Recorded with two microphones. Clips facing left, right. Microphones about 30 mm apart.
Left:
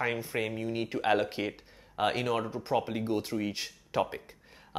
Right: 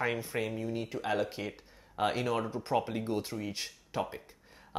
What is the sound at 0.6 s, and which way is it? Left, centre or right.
Speech, left.